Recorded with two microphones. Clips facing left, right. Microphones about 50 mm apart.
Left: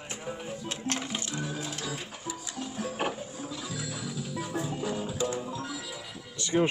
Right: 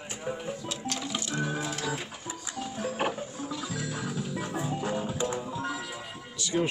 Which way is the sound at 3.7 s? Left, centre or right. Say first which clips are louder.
Right 3 dB; right.